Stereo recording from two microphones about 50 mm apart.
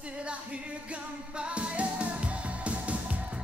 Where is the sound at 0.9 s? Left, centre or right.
Right.